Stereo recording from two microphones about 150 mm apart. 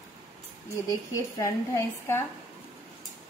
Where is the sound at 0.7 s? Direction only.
20° left (ahead or behind).